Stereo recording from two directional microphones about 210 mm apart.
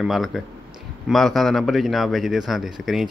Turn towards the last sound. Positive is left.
turn(degrees=0)  # may be behind; listen again after turning